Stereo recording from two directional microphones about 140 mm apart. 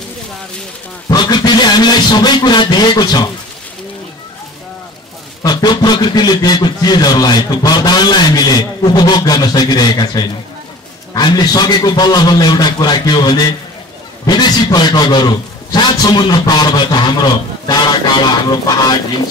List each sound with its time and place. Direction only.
1.0 s a man's voice: 30° left (ahead or behind)
5.4 s a man's voice: 30° left (ahead or behind)